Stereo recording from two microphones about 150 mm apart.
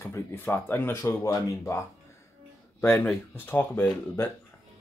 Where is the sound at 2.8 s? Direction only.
15° left (ahead or behind).